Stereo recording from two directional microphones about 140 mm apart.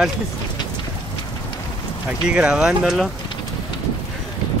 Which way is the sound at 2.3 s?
5° right (ahead or behind).